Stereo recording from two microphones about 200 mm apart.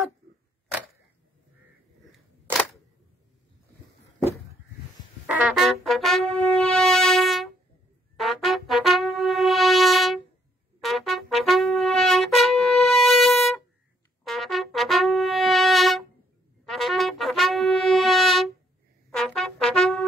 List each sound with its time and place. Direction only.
5.2 s brass instrument: 5° right (ahead or behind)
10.8 s trumpet: centre (ahead or behind)
16.6 s brass instrument: centre (ahead or behind)
19.0 s trumpet: centre (ahead or behind)